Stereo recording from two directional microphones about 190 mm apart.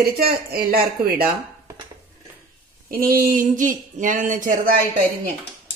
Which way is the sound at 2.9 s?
50° right (ahead or behind).